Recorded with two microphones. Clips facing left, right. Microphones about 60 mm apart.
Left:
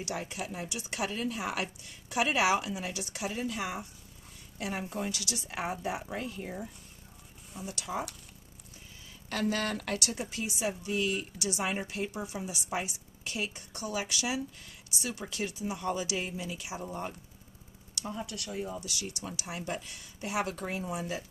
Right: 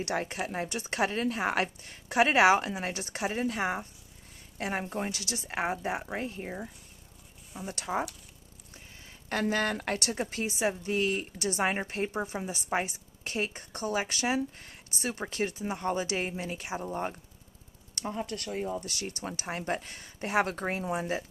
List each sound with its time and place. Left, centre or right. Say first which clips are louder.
0.0 s a woman's voice: right 5 dB; right
7.6 s a woman's voice: right 4 dB; right
9.3 s a woman's voice: right 3 dB; right
17.9 s a woman's voice: right 4 dB; right